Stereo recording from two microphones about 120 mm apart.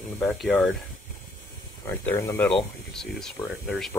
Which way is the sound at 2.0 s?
20° left (ahead or behind).